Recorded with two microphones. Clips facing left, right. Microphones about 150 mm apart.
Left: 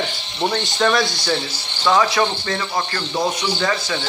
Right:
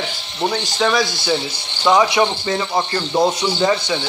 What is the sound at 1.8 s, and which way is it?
Speech, 15° right (ahead or behind).